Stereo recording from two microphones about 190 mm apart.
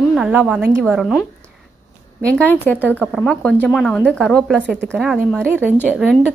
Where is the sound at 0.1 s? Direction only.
5° right (ahead or behind).